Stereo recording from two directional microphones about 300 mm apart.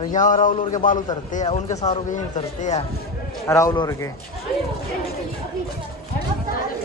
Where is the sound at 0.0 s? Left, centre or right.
Left.